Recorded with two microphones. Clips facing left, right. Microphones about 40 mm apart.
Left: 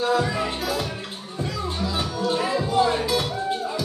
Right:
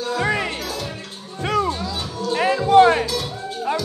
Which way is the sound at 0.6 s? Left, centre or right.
Centre.